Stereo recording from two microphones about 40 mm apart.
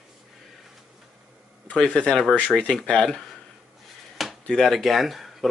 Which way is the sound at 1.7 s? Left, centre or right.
Left.